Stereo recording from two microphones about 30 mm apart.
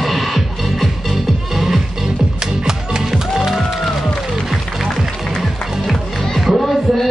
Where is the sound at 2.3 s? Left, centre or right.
Right.